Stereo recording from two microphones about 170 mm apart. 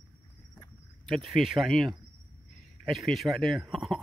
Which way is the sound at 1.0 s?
Centre (ahead or behind).